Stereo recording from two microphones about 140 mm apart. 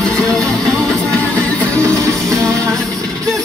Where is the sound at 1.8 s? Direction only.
25° right (ahead or behind).